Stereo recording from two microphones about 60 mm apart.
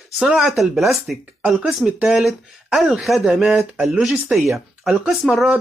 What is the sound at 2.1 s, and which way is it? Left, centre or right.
Speech, centre.